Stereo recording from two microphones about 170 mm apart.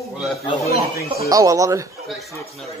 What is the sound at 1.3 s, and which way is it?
Speech, 20° right (ahead or behind).